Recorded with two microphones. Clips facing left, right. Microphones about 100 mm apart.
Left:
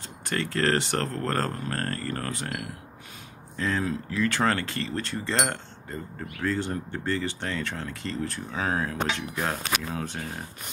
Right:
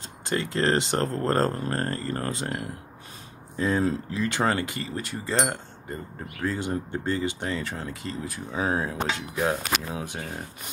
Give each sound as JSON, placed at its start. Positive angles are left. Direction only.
{"t": 0.2, "sound": "speech", "side_deg": -20}
{"t": 1.8, "sound": "speech", "side_deg": -20}
{"t": 9.1, "sound": "speech", "side_deg": -10}